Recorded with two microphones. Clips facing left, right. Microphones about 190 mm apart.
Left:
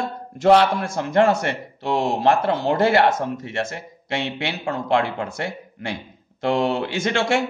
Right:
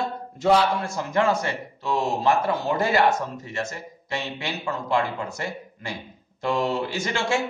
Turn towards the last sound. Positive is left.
turn(degrees=70)  # may be behind; listen again after turning